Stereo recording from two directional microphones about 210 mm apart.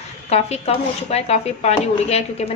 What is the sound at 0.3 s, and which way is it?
A woman's voice, 30° left (ahead or behind).